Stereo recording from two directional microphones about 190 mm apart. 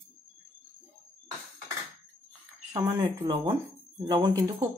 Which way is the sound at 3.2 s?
25° right (ahead or behind).